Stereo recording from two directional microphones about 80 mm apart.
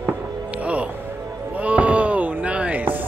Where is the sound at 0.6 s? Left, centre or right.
Centre.